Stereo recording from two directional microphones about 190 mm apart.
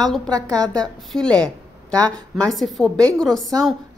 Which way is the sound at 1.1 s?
5° left (ahead or behind).